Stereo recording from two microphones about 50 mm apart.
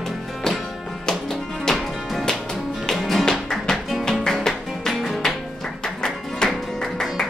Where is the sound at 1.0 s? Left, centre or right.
Centre.